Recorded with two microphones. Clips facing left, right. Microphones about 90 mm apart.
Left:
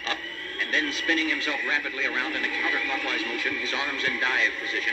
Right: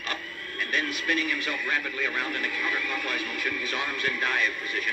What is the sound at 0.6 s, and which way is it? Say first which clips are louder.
Speech: left 1 dB; 25° left (ahead or behind).